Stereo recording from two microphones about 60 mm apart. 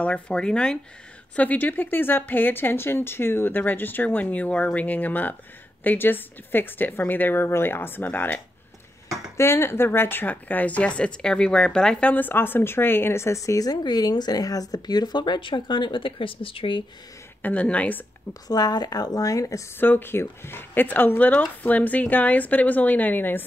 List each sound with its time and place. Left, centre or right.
0.0 s speech: centre
1.3 s speech: left
9.4 s speech: left; by 12.1 s centre
12.1 s speech: left
17.4 s speech: left
18.5 s speech: left
19.8 s speech: left